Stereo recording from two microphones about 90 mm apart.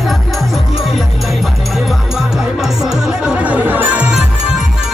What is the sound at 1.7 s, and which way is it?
Music, 5° right (ahead or behind).